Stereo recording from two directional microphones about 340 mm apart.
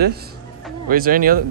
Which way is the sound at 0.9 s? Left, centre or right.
Right.